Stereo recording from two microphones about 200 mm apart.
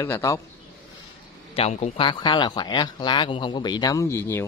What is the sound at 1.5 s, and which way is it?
A man's voice, 30° left (ahead or behind).